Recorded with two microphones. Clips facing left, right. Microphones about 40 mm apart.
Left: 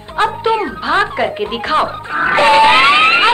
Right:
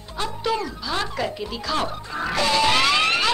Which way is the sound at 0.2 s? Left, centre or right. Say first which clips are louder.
Left 11 dB; left.